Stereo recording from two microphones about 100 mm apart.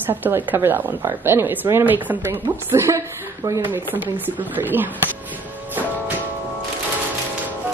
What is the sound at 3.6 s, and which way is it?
A woman's voice, 20° right (ahead or behind).